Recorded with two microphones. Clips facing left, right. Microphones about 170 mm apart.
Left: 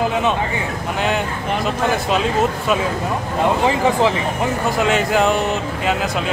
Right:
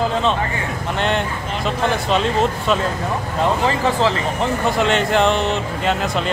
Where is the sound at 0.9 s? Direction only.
5° left (ahead or behind).